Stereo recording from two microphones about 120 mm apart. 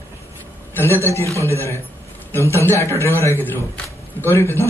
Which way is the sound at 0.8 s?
20° left (ahead or behind).